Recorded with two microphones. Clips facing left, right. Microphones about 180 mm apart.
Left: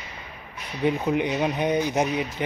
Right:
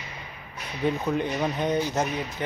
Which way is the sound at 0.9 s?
15° left (ahead or behind).